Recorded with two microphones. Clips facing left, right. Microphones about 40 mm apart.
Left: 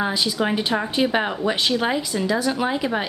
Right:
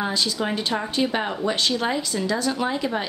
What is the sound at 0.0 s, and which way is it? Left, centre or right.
Speech, centre.